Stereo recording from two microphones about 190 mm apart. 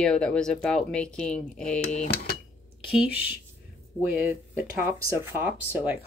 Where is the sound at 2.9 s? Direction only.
5° right (ahead or behind).